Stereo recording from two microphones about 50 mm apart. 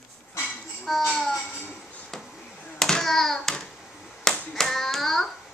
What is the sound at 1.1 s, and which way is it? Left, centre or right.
Music, centre.